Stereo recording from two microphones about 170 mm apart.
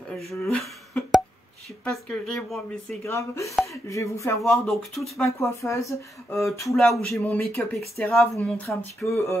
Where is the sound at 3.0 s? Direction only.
15° left (ahead or behind).